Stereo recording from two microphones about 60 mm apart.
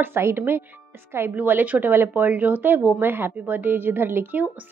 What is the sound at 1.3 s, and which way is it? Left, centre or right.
A woman's voice, right.